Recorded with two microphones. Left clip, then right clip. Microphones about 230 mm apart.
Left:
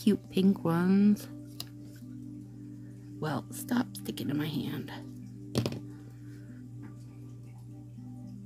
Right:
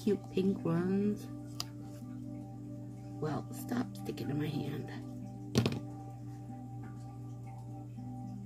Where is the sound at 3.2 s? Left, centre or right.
Left.